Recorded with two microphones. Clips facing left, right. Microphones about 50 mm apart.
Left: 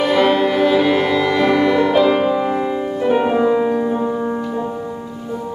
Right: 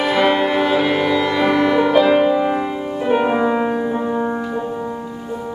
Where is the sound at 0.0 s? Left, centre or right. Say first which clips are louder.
Left 1 dB; centre.